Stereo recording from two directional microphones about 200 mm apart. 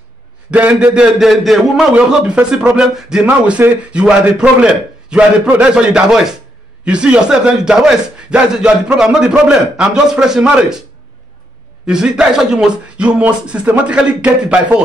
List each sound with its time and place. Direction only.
0.5 s a man's voice: 5° right (ahead or behind)
11.8 s a man's voice: 5° right (ahead or behind)